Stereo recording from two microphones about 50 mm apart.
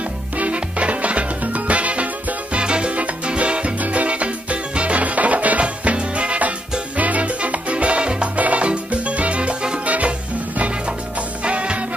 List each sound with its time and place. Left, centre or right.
0.4 s music: right
7.0 s salsa music: right
9.8 s music: right
11.4 s music: right